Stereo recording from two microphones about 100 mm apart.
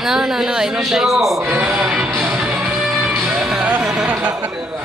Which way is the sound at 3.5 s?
10° right (ahead or behind).